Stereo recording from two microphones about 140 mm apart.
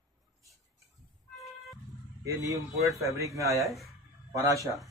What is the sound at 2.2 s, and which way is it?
Speech, 25° right (ahead or behind).